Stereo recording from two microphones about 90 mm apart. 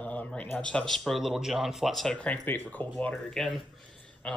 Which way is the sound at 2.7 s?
15° left (ahead or behind).